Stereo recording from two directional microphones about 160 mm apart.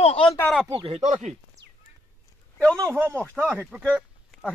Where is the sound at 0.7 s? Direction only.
40° right (ahead or behind).